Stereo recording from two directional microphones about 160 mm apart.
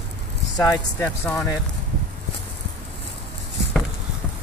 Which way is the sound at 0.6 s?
20° left (ahead or behind).